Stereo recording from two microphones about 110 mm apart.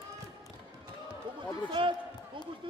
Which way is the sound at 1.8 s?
50° right (ahead or behind).